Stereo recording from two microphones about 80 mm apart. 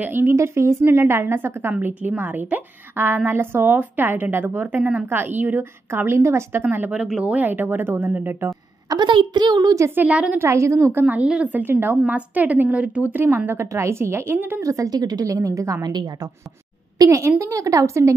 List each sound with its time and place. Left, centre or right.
0.0 s a woman's voice: right
6.9 s speech: centre
7.3 s a woman's voice: right
8.8 s a woman's voice: right
9.1 s a woman's voice: right
9.8 s a woman's voice: right
10.4 s a woman's voice: right
11.1 s speech: centre
11.5 s a woman's voice: right
13.7 s a woman's voice: right
14.6 s speech: right
15.8 s a woman's voice: right
17.0 s a woman's voice: right